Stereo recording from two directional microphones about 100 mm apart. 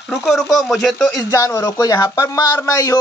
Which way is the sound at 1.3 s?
35° left (ahead or behind).